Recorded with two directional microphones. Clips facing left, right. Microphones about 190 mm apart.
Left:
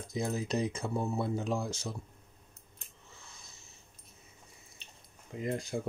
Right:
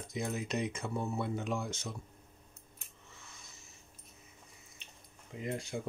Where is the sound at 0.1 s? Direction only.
35° left (ahead or behind).